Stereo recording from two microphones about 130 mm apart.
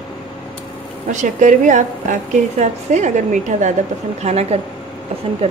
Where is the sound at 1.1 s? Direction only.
75° right (ahead or behind).